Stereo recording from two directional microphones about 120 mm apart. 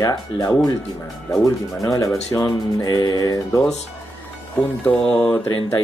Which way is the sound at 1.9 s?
30° left (ahead or behind).